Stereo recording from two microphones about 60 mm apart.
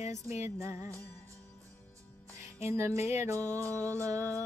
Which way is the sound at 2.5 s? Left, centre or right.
Right.